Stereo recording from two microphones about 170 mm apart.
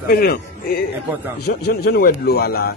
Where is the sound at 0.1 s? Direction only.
65° left (ahead or behind).